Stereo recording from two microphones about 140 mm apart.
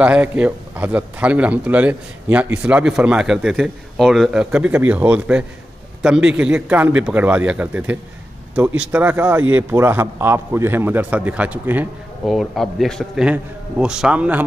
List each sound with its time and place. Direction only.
0.0 s a man's voice: 10° right (ahead or behind)
12.3 s a man's voice: centre (ahead or behind)